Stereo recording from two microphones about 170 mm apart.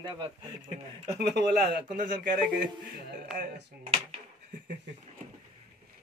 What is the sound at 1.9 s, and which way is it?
Speech, 60° right (ahead or behind).